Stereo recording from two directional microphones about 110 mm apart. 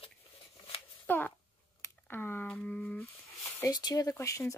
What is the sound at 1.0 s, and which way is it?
Speech, 15° left (ahead or behind).